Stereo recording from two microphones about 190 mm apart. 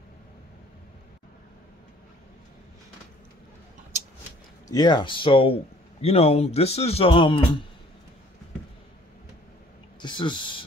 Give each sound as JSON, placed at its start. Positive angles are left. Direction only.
{"t": 4.6, "sound": "a man's voice", "side_deg": 20}
{"t": 10.0, "sound": "speech", "side_deg": 25}